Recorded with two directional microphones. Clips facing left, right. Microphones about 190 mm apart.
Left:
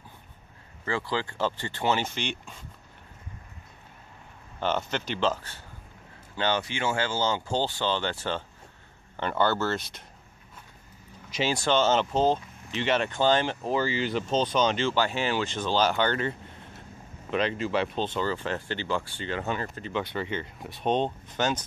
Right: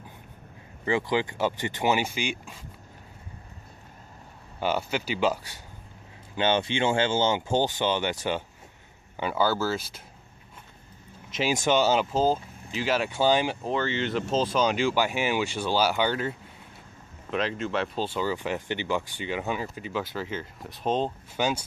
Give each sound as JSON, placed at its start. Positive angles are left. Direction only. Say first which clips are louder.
{"t": 0.8, "sound": "speech", "louder": "right 4 dB", "side_deg": -15}
{"t": 4.6, "sound": "speech", "louder": "right 1 dB", "side_deg": -10}
{"t": 11.2, "sound": "speech", "louder": "right 1 dB", "side_deg": 0}
{"t": 11.5, "sound": "speech", "louder": "right 1 dB", "side_deg": -15}
{"t": 13.6, "sound": "speech", "louder": "left 1 dB", "side_deg": 5}